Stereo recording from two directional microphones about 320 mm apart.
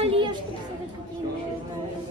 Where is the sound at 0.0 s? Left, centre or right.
Centre.